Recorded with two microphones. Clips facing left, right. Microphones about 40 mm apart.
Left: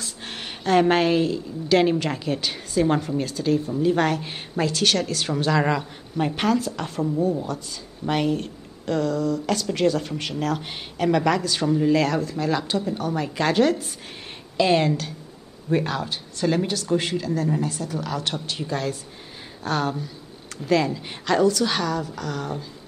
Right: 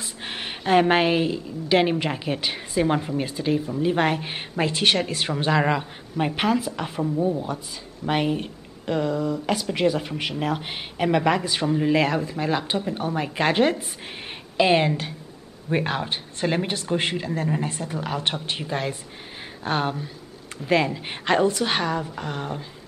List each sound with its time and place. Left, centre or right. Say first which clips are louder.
0.0 s a woman's voice: right 2 dB; right
8.1 s speech: even; right